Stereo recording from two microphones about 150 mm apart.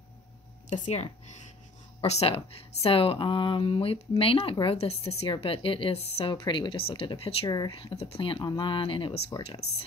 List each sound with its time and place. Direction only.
0.7 s speech: 50° left (ahead or behind)
7.4 s speech: 25° left (ahead or behind); by 9.7 s 40° left (ahead or behind)